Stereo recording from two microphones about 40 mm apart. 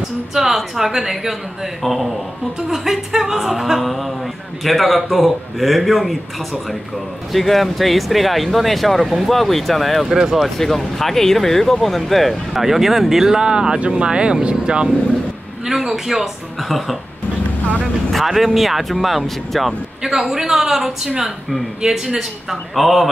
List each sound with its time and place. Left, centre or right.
0.3 s a man's voice: centre
7.3 s speech: centre
10.0 s a man's voice: centre
10.6 s speech: centre; by 14.9 s right
15.6 s a man's voice: centre
18.1 s a man's voice: centre